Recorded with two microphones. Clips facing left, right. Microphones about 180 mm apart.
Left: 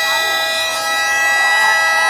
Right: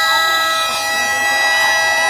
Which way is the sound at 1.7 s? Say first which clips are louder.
Right 1 dB; 45° right (ahead or behind).